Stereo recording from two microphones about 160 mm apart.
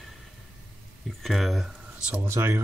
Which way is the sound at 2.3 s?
15° right (ahead or behind).